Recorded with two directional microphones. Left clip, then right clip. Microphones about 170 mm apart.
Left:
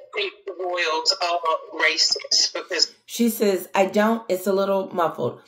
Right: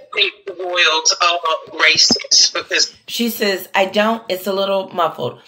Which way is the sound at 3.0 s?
20° left (ahead or behind).